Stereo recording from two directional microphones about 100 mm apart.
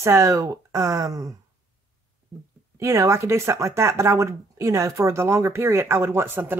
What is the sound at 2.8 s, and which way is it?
Speech, 30° right (ahead or behind).